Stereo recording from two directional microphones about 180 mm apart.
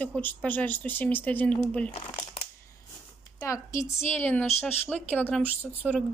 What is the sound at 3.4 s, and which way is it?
A woman's voice, 15° left (ahead or behind).